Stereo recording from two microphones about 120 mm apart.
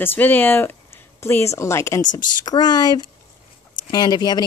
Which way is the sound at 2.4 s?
35° left (ahead or behind).